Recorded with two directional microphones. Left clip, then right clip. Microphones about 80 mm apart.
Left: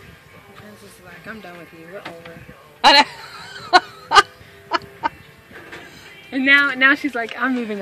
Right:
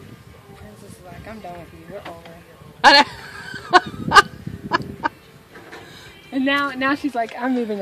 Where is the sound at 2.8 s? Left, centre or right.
Right.